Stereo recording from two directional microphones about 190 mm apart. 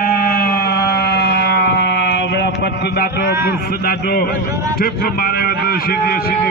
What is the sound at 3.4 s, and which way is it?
A man's voice, 50° left (ahead or behind).